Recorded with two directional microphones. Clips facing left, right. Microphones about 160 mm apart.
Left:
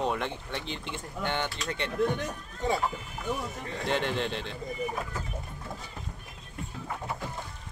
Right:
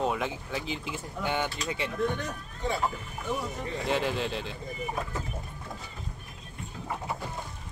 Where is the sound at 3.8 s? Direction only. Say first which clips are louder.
Even; centre (ahead or behind).